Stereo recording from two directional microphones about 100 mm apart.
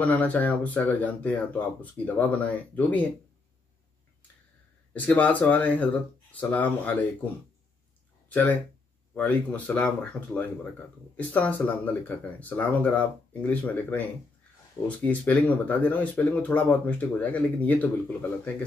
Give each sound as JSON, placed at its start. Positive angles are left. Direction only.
{"t": 0.0, "sound": "speech", "side_deg": 15}
{"t": 4.9, "sound": "speech", "side_deg": 15}
{"t": 8.3, "sound": "speech", "side_deg": 15}